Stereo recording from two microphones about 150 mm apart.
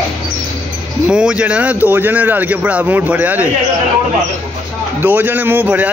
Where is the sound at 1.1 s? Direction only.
5° right (ahead or behind).